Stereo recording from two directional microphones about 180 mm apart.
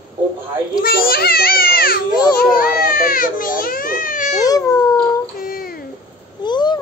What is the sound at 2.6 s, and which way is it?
Baby cry, 55° left (ahead or behind).